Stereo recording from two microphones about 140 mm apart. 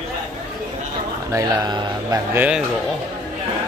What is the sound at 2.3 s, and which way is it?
Speech, 10° right (ahead or behind).